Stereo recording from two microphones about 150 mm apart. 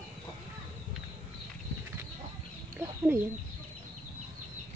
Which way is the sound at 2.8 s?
15° right (ahead or behind).